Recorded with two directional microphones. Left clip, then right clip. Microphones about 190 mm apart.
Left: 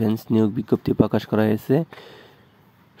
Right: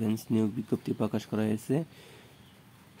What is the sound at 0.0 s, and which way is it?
Speech, 35° left (ahead or behind).